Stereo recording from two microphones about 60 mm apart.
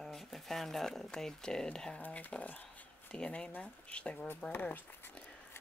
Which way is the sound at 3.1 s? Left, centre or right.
Centre.